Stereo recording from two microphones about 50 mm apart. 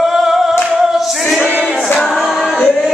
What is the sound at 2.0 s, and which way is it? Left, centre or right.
Music, centre.